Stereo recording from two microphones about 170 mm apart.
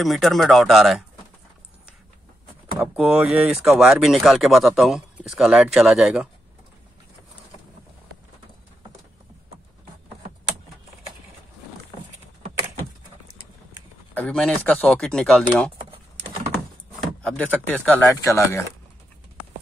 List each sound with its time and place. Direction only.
0.0 s speech: centre (ahead or behind)
2.8 s speech: 10° right (ahead or behind)
14.1 s speech: 5° left (ahead or behind)
17.2 s speech: 5° left (ahead or behind)